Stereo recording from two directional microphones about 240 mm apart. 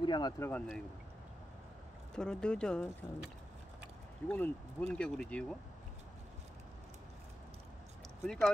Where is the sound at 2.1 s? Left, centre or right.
Centre.